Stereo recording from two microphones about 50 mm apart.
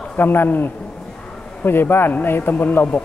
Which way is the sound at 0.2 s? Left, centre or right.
Left.